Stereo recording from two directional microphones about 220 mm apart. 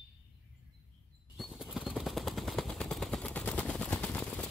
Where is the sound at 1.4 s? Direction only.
Centre (ahead or behind).